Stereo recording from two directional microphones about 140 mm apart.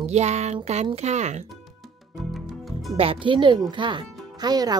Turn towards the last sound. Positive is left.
turn(degrees=-30)  # may be behind; listen again after turning